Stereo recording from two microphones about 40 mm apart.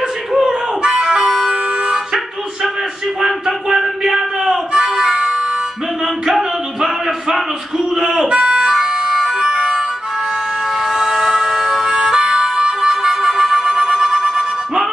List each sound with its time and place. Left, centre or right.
0.3 s a sound: centre
1.0 s music: centre
3.2 s music: centre
6.2 s a sound: centre
7.9 s speech: centre
8.3 s music: right
8.7 s music: centre
10.9 s music: centre